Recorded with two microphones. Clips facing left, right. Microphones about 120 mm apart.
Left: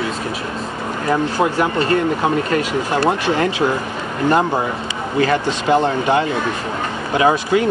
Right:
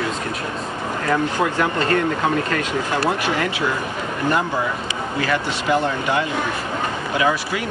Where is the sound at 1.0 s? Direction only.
25° left (ahead or behind).